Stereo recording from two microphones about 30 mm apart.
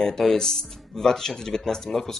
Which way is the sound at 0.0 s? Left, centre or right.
Centre.